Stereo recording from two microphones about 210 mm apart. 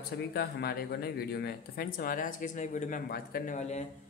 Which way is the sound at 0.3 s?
50° left (ahead or behind).